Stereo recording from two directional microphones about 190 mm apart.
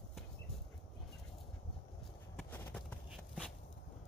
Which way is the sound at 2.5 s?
10° left (ahead or behind).